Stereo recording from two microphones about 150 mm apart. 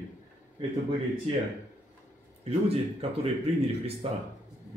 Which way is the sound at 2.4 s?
40° right (ahead or behind).